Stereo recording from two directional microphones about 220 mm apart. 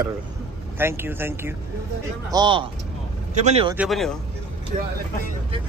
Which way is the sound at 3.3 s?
30° right (ahead or behind).